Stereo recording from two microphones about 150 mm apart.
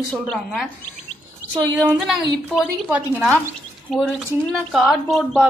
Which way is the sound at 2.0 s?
Centre (ahead or behind).